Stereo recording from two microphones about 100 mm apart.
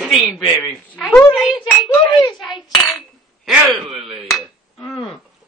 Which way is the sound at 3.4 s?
5° right (ahead or behind).